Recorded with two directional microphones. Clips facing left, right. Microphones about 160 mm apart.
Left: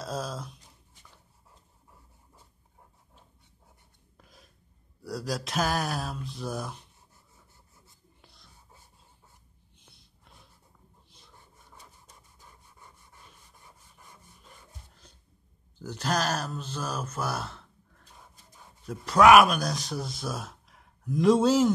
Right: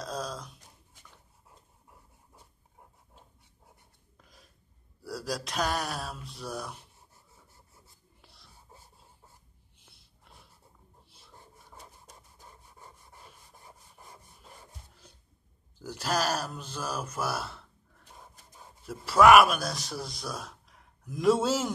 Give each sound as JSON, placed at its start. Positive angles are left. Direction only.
{"t": 0.0, "sound": "a sound", "side_deg": 5}
{"t": 4.2, "sound": "a sound", "side_deg": 0}
{"t": 5.0, "sound": "speech", "side_deg": 0}
{"t": 8.2, "sound": "whispering", "side_deg": 0}
{"t": 12.4, "sound": "wood", "side_deg": -35}
{"t": 15.0, "sound": "cough", "side_deg": -10}
{"t": 15.8, "sound": "speech", "side_deg": -10}
{"t": 18.9, "sound": "speech", "side_deg": -5}